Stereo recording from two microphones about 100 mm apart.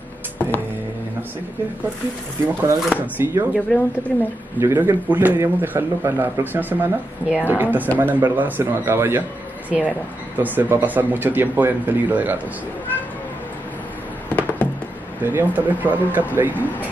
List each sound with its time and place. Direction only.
2.4 s a man's voice: 25° right (ahead or behind)
3.5 s a woman's voice: 15° left (ahead or behind)
4.6 s a man's voice: 25° right (ahead or behind)
15.2 s speech: 20° right (ahead or behind)